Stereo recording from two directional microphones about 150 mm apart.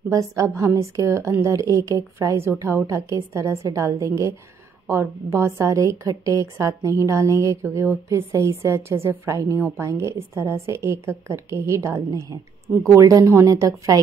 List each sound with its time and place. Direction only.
0.1 s a woman's voice: 20° right (ahead or behind)